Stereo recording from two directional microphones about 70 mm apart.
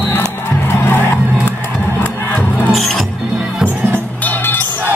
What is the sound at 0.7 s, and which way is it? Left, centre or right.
Music, left.